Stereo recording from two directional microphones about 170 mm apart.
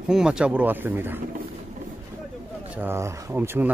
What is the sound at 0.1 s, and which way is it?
Speech, 5° right (ahead or behind).